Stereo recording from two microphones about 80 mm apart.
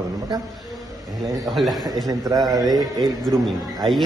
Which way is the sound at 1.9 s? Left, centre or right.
Right.